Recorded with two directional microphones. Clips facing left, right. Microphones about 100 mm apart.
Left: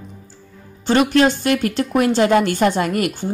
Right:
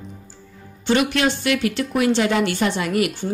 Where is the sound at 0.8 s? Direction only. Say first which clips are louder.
Left 4 dB; 40° left (ahead or behind).